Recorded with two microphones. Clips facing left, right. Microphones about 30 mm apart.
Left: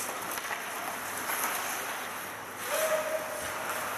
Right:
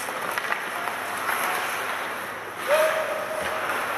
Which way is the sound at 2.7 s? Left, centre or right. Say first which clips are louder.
Right 8 dB; right.